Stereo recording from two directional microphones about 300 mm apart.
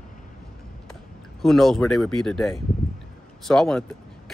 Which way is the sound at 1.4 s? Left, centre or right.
Centre.